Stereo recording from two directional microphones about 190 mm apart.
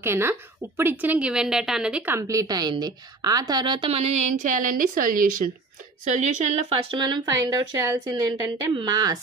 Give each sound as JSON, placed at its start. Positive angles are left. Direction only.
{"t": 0.0, "sound": "a woman's voice", "side_deg": -10}